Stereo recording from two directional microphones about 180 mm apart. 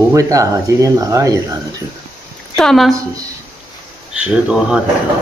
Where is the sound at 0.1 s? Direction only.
20° right (ahead or behind).